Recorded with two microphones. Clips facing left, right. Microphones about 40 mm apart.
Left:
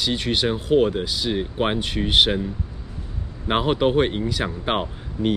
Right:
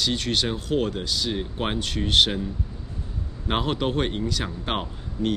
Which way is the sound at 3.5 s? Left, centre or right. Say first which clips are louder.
Left 5 dB; centre.